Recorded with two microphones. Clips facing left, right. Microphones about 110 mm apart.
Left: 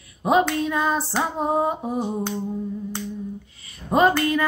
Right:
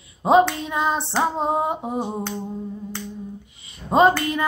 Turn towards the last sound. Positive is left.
turn(degrees=-20)  # may be behind; listen again after turning